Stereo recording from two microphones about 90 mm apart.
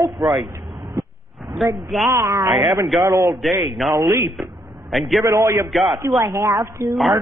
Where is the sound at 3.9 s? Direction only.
20° right (ahead or behind).